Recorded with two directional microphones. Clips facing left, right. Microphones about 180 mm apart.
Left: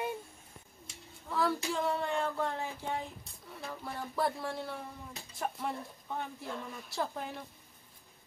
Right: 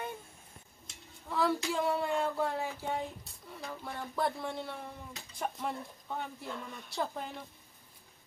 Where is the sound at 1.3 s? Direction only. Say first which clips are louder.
Right 1 dB; centre (ahead or behind).